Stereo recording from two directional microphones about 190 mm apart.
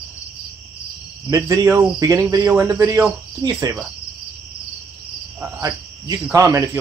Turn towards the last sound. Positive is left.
turn(degrees=-15)  # may be behind; listen again after turning